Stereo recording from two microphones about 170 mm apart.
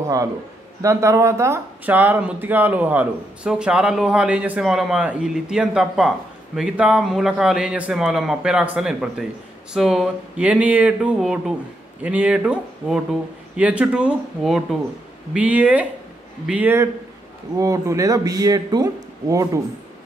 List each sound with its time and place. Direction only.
0.0 s a man's voice: 20° right (ahead or behind)